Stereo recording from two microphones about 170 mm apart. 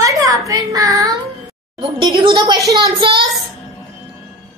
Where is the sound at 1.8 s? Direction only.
30° right (ahead or behind).